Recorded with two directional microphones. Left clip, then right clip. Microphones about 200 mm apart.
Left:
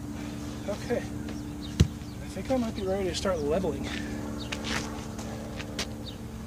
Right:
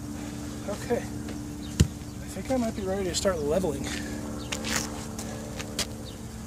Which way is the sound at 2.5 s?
15° right (ahead or behind).